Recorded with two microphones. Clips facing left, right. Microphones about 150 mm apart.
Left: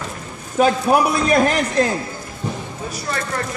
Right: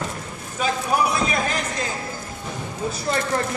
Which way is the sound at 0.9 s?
60° left (ahead or behind).